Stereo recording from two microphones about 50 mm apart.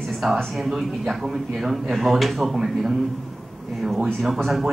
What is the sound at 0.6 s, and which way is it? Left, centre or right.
Speech, centre.